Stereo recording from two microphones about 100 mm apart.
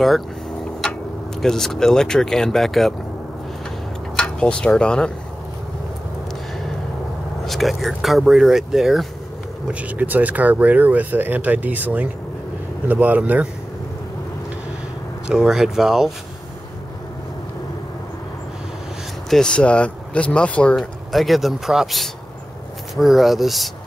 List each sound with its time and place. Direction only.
1.4 s speech: 5° left (ahead or behind)
4.2 s speech: 10° left (ahead or behind)
7.4 s speech: centre (ahead or behind)
9.7 s speech: 15° right (ahead or behind)
15.2 s speech: 5° right (ahead or behind)
19.2 s speech: 5° left (ahead or behind)